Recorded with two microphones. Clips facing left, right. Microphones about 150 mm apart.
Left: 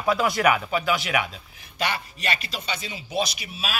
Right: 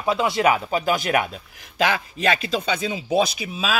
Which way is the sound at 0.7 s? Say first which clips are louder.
Right 3 dB; 40° right (ahead or behind).